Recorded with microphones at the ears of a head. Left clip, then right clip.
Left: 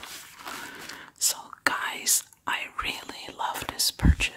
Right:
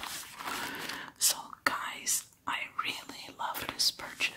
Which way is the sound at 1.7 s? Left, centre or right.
Left.